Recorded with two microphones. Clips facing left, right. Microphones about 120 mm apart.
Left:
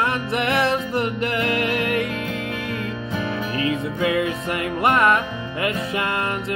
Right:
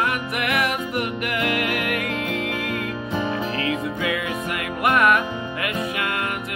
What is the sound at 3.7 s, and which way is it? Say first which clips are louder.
Music: left 5 dB; 25° left (ahead or behind).